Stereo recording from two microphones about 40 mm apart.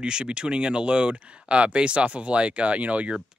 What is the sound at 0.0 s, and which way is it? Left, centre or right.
Speech, right.